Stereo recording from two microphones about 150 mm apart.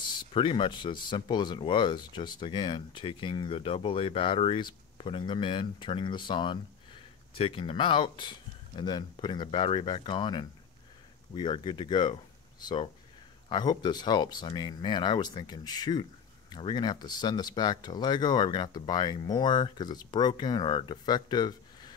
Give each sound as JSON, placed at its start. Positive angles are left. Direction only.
{"t": 0.2, "sound": "speech", "side_deg": 35}